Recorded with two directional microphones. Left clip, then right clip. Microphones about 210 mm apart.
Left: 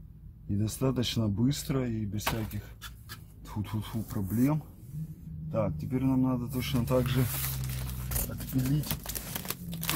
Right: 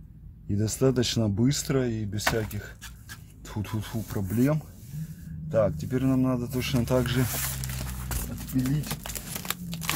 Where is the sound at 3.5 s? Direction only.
25° right (ahead or behind).